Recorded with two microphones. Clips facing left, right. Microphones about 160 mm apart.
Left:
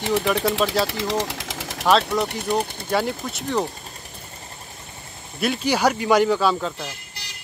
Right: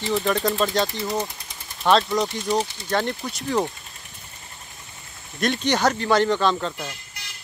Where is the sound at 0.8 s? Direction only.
90° left.